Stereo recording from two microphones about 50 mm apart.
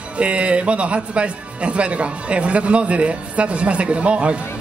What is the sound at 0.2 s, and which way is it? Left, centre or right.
Speech, right.